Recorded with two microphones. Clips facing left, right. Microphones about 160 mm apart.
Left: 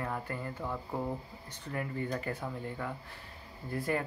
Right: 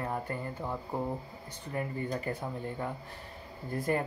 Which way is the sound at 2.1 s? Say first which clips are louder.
Right 1 dB; 20° right (ahead or behind).